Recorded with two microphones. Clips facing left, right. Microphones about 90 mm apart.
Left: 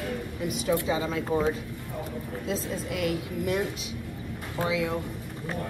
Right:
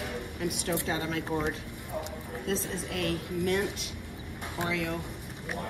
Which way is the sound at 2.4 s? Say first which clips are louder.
Left 1 dB; 60° right (ahead or behind).